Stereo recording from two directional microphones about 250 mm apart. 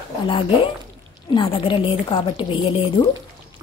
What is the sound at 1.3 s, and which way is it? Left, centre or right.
A woman's voice, centre.